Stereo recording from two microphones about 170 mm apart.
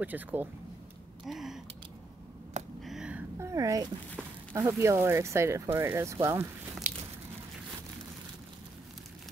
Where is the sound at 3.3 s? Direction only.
20° right (ahead or behind).